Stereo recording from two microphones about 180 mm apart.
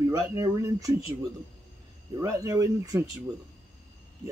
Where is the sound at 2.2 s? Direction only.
20° right (ahead or behind).